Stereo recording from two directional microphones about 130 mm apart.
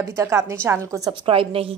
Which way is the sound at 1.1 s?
45° right (ahead or behind).